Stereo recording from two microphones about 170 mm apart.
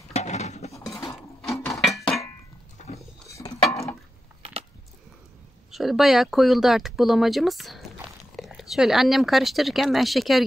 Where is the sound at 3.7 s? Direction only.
15° left (ahead or behind).